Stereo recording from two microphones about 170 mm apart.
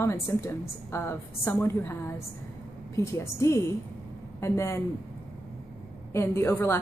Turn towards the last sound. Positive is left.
turn(degrees=15)  # may be behind; listen again after turning